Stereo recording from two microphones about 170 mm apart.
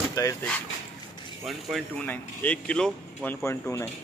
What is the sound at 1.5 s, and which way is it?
Speech, centre (ahead or behind).